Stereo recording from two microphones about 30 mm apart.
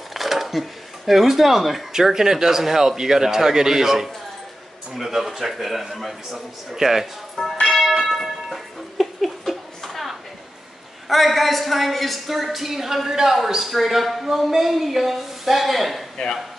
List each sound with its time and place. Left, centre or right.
0.1 s a sound: centre
1.9 s a man's voice: centre
7.4 s speech: centre
7.8 s church bell: centre
8.5 s a sound: centre
11.1 s speech: centre